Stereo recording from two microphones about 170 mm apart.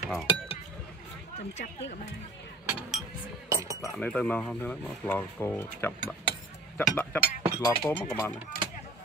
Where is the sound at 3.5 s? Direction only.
20° right (ahead or behind).